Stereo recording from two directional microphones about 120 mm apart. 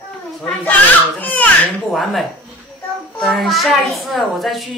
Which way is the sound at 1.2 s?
15° left (ahead or behind).